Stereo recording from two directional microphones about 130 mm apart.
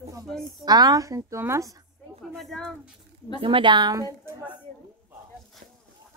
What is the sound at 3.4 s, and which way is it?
Speech, 40° right (ahead or behind).